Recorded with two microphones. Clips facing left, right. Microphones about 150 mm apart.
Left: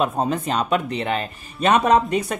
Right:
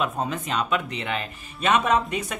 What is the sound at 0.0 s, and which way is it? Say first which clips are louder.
Speech: left 5 dB; 35° left (ahead or behind).